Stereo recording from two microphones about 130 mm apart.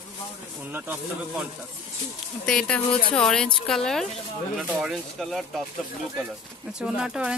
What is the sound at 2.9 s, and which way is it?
Speech, 45° left (ahead or behind).